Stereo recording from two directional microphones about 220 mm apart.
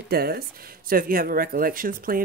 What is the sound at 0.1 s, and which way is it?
Speech, 45° right (ahead or behind).